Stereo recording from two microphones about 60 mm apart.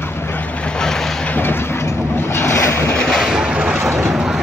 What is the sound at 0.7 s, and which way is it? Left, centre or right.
Vehicle, centre.